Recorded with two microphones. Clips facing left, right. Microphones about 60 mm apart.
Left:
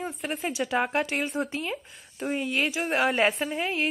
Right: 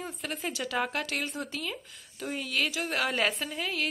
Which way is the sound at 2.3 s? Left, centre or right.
Centre.